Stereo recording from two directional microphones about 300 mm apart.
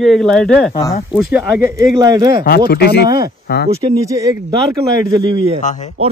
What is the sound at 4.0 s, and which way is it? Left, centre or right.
Speech, centre.